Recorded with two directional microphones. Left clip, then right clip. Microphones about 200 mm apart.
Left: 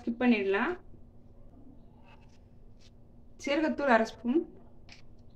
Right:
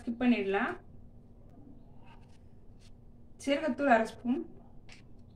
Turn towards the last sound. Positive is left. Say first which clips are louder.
# left 1 dB
turn(degrees=55)  # may be behind; listen again after turning